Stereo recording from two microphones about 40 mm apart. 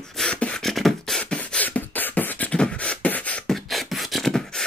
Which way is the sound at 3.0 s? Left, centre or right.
Left.